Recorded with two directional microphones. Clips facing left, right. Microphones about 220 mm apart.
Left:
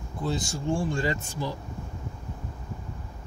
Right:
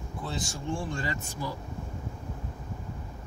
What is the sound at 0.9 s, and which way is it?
Speech, 30° left (ahead or behind).